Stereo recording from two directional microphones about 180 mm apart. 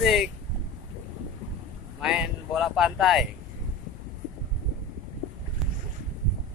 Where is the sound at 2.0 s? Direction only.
5° right (ahead or behind).